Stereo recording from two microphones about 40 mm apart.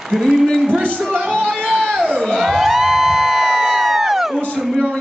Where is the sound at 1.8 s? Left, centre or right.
Centre.